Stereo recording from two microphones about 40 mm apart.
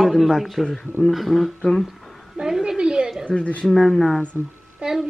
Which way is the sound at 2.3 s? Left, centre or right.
Centre.